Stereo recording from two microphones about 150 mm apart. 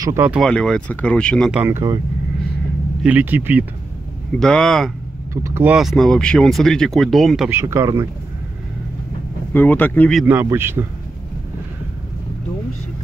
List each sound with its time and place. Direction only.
0.0 s speech: 15° right (ahead or behind)
0.3 s speech: 5° left (ahead or behind)
1.5 s speech: 15° right (ahead or behind)
3.0 s speech: 10° right (ahead or behind)
4.4 s speech: 5° left (ahead or behind)
5.3 s speech: 20° right (ahead or behind)
5.8 s speech: centre (ahead or behind)
7.4 s speech: 15° right (ahead or behind)
9.5 s speech: 10° left (ahead or behind)
10.2 s speech: 15° right (ahead or behind)